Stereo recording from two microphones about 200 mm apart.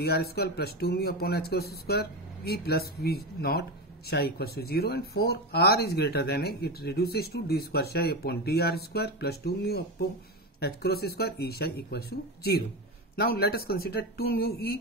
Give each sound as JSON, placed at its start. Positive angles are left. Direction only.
{"t": 0.0, "sound": "speech", "side_deg": 50}